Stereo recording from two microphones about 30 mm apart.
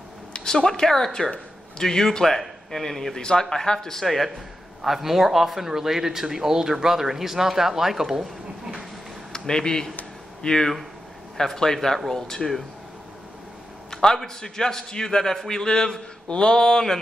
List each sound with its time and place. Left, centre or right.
0.3 s a man's voice: left; by 3.2 s centre
3.2 s a man's voice: left
4.0 s a man's voice: centre
4.8 s speech: centre
9.3 s a man's voice: left
13.8 s a man's voice: left